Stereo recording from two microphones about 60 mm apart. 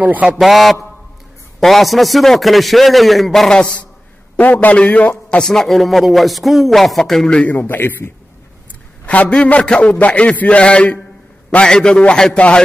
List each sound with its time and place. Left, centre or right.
0.0 s a man's voice: right
0.4 s a man's voice: centre
4.4 s a man's voice: left
5.4 s a man's voice: centre
7.4 s a man's voice: left
9.0 s a man's voice: left